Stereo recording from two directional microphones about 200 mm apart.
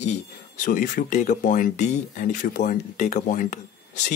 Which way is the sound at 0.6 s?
40° left (ahead or behind).